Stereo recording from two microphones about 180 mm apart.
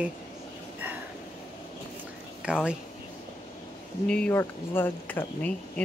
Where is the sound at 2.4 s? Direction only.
5° right (ahead or behind).